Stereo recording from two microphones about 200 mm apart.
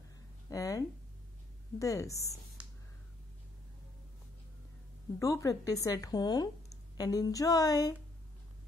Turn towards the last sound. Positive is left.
turn(degrees=15)  # may be behind; listen again after turning